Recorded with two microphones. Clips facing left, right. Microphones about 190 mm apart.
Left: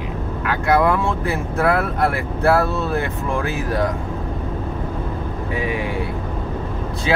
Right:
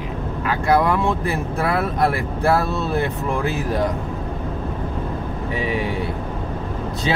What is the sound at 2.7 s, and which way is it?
Speech, 20° right (ahead or behind).